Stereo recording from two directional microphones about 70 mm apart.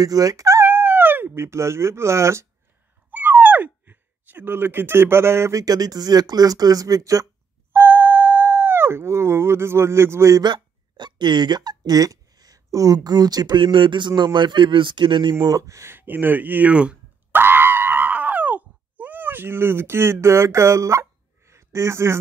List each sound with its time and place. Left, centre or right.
0.0 s speech: right
0.7 s speech: right
3.1 s sigh: right
5.6 s speech: right
7.7 s a sound: right
10.4 s speech: right
14.0 s speech: right
15.4 s speech: right
15.9 s speech: right
16.7 s speech: centre
17.3 s screaming: right